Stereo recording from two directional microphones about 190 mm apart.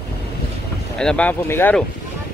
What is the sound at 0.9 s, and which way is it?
Speech, 5° left (ahead or behind).